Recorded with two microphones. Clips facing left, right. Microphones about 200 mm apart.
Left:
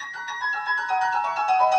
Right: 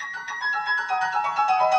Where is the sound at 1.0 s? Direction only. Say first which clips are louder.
Right 2 dB; 35° left (ahead or behind).